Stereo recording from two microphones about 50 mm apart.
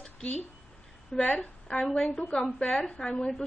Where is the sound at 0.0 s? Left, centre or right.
Centre.